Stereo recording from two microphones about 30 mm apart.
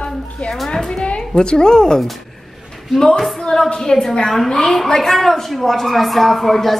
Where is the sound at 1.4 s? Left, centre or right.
Left.